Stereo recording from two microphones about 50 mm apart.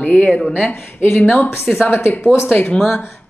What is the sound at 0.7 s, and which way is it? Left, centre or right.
A woman's voice, left.